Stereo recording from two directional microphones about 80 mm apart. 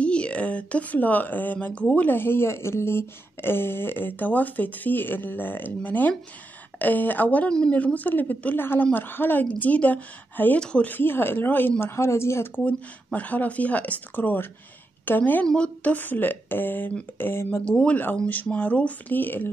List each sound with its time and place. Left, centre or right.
0.0 s speech: centre
10.9 s speech: left
11.8 s speech: left
12.6 s speech: centre
15.4 s speech: centre; by 17.6 s left
18.1 s speech: centre